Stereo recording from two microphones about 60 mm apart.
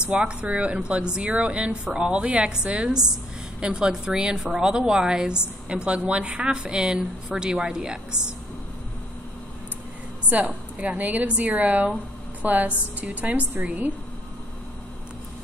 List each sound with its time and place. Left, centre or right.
0.1 s a woman's voice: centre
10.3 s a woman's voice: right